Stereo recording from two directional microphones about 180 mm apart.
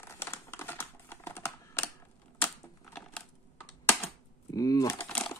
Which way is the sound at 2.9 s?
10° left (ahead or behind).